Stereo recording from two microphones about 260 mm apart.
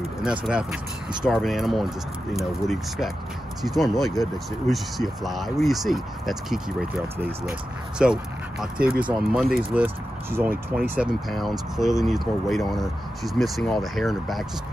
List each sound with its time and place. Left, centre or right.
0.5 s speech: centre